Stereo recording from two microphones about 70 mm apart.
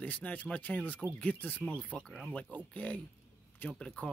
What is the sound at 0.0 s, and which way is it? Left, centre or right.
Speech, left.